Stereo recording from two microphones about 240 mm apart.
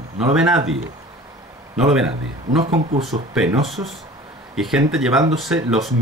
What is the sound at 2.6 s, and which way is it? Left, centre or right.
Speech, right.